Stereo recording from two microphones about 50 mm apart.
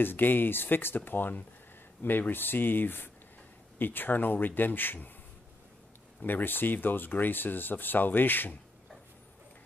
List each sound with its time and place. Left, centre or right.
0.0 s speech: left
6.2 s speech: left